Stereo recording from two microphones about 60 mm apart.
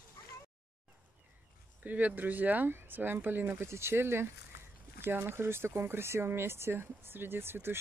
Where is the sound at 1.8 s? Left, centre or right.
Right.